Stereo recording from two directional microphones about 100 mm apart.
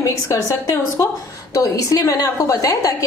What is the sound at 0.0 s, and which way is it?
A woman's voice, 30° left (ahead or behind).